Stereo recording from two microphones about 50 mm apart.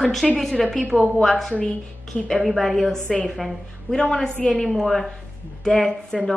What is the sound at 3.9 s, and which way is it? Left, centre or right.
Speech, centre.